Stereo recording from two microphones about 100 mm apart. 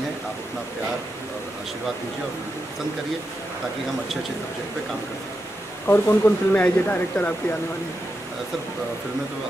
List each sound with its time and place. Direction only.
5.9 s speech: 20° left (ahead or behind)